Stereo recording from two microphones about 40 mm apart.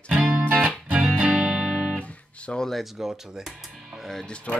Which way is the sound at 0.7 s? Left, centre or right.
Right.